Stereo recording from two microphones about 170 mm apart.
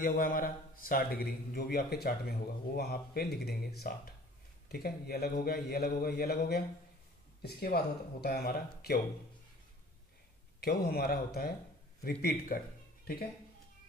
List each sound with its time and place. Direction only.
0.0 s a man's voice: 55° left (ahead or behind)
10.6 s a man's voice: 65° left (ahead or behind)